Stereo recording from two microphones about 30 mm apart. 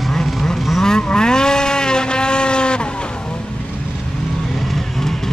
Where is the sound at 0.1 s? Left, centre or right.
Centre; by 2.9 s left.